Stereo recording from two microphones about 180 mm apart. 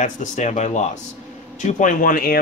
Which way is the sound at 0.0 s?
40° left (ahead or behind).